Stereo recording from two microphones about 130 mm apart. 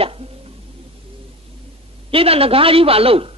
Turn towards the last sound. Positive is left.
turn(degrees=-45)  # may be behind; listen again after turning